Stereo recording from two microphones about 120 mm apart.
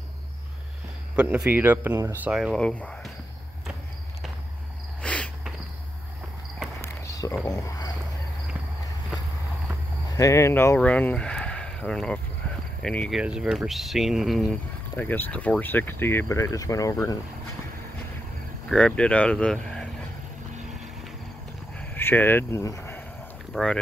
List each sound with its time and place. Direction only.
1.1 s speech: 10° right (ahead or behind)
2.2 s speech: 5° right (ahead or behind)
2.5 s speech: 10° left (ahead or behind)
5.0 s insect: 10° left (ahead or behind)
6.8 s a sound: 25° left (ahead or behind)
7.4 s speech: 30° left (ahead or behind)
10.0 s speech: 25° left (ahead or behind)
10.8 s speech: 10° left (ahead or behind)
13.1 s speech: 5° right (ahead or behind)
15.0 s speech: 15° left (ahead or behind)
18.7 s speech: 5° left (ahead or behind)
21.7 s a sound: 15° left (ahead or behind)
23.5 s speech: 5° left (ahead or behind)